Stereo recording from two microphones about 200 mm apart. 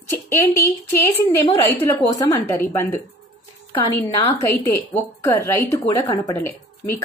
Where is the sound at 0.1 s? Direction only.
10° left (ahead or behind).